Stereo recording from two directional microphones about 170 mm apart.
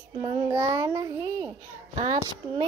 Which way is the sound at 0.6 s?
20° right (ahead or behind).